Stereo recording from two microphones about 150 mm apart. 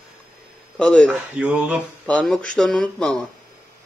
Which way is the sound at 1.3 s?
5° right (ahead or behind).